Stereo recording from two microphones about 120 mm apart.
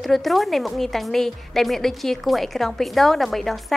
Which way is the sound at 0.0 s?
Centre (ahead or behind).